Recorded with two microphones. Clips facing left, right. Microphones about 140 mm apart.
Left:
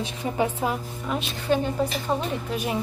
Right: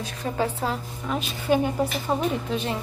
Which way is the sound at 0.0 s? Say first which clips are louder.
Left 1 dB; 15° left (ahead or behind).